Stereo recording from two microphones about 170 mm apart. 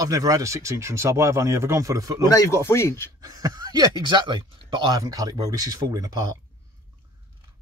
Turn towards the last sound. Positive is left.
turn(degrees=-20)  # may be behind; listen again after turning